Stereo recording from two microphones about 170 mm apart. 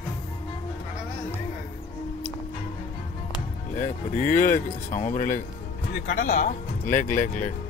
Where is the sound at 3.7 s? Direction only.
45° left (ahead or behind).